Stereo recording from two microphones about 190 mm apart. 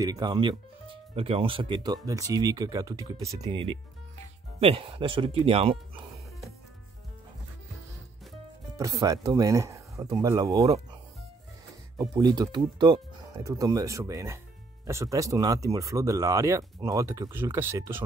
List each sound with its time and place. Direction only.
0.0 s speech: 20° right (ahead or behind)
8.7 s speech: 15° right (ahead or behind)
12.0 s speech: 20° right (ahead or behind)